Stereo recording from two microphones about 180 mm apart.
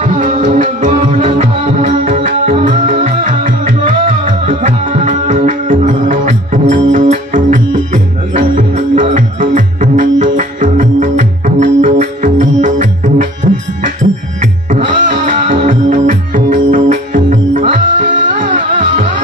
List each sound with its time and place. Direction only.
0.0 s music: 45° right (ahead or behind)
14.7 s music: 40° right (ahead or behind)